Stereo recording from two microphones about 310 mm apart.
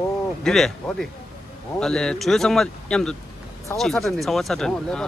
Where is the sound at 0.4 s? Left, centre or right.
Centre.